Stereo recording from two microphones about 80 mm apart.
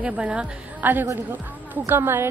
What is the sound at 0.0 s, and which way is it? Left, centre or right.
Speech, centre.